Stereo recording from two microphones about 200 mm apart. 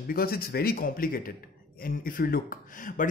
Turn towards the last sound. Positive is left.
turn(degrees=40)  # may be behind; listen again after turning